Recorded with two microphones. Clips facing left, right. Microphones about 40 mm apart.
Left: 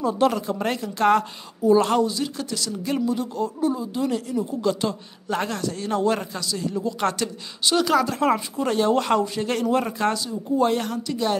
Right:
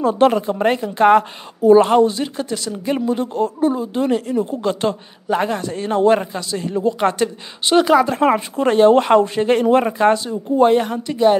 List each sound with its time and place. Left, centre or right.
0.0 s speech: right
0.3 s speech: right
5.3 s speech: right
5.7 s speech: right